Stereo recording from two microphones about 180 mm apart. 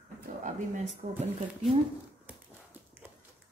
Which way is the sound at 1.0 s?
40° right (ahead or behind).